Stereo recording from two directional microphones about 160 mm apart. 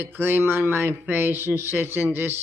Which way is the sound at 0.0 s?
15° right (ahead or behind).